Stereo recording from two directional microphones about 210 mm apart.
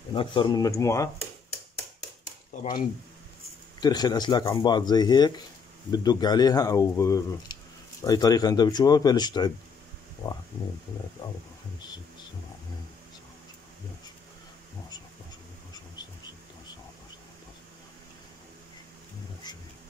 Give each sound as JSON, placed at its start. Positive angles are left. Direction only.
{"t": 0.1, "sound": "speech", "side_deg": 25}
{"t": 3.8, "sound": "speech", "side_deg": 20}
{"t": 19.4, "sound": "music", "side_deg": 20}